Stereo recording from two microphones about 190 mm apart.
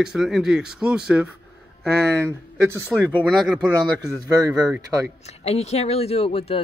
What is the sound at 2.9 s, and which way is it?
Speech, centre (ahead or behind).